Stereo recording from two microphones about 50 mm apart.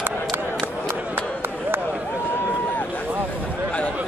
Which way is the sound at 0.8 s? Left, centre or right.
Right.